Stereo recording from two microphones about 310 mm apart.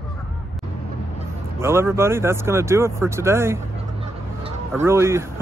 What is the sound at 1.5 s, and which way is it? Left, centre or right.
Speech, centre.